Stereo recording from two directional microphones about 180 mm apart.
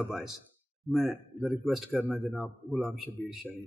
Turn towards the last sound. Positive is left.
turn(degrees=0)  # may be behind; listen again after turning